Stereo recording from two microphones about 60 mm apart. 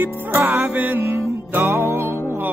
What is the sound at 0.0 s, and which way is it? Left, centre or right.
Music, right.